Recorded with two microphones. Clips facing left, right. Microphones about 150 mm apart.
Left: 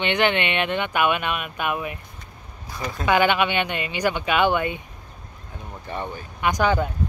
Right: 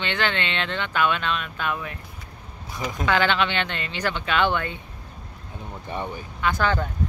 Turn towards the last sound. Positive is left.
turn(degrees=15)  # may be behind; listen again after turning